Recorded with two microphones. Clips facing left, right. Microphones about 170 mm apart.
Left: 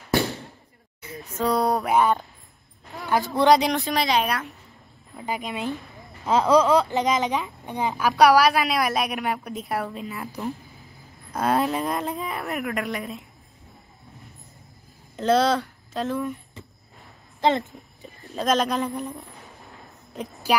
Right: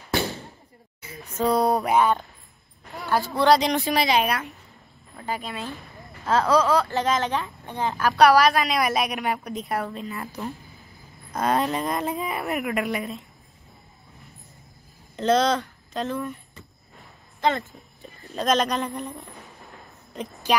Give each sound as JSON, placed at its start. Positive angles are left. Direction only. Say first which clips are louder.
{"t": 1.0, "sound": "speech", "louder": "right 1 dB", "side_deg": 0}
{"t": 3.3, "sound": "speech", "louder": "left 1 dB", "side_deg": 20}
{"t": 3.6, "sound": "speech", "louder": "right 1 dB", "side_deg": 0}
{"t": 5.1, "sound": "speech", "louder": "left 1 dB", "side_deg": 15}
{"t": 11.3, "sound": "speech", "louder": "left 1 dB", "side_deg": 5}
{"t": 15.1, "sound": "speech", "louder": "left 1 dB", "side_deg": 5}
{"t": 17.4, "sound": "a woman's voice", "louder": "left 2 dB", "side_deg": 20}
{"t": 18.0, "sound": "a woman's voice", "louder": "even", "side_deg": 0}